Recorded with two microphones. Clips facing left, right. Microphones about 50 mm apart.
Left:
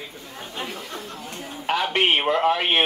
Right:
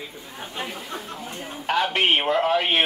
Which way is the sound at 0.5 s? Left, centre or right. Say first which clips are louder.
Even; centre.